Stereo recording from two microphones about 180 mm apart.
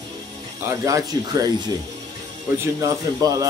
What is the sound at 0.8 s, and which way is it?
Speech, 20° right (ahead or behind).